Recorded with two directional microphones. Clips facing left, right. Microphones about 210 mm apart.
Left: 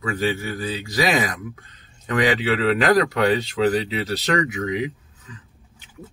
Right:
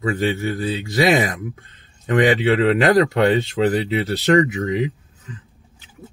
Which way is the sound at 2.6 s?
25° right (ahead or behind).